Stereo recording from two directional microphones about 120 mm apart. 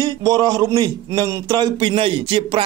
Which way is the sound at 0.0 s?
30° right (ahead or behind).